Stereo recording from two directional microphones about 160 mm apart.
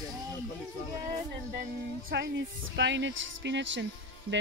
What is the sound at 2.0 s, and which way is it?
Speech, 90° right.